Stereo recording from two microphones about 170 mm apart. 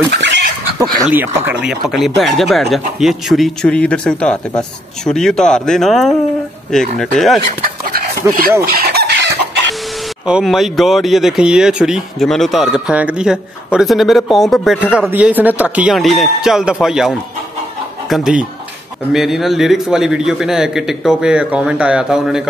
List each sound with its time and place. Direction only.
0.1 s chicken: 90° right
1.0 s speech: 10° right (ahead or behind)
1.9 s speech: centre (ahead or behind)
8.2 s speech: 15° right (ahead or behind)
8.6 s chicken: 65° right (ahead or behind)
10.2 s speech: 5° right (ahead or behind)
18.1 s speech: 5° right (ahead or behind)